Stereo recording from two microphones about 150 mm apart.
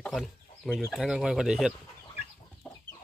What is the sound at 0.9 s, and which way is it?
Speech, 5° right (ahead or behind).